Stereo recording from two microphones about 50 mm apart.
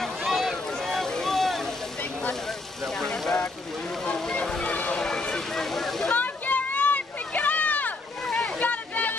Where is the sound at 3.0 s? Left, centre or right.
Centre.